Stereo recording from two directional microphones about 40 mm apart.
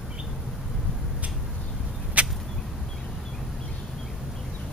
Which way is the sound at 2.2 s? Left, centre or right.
Right.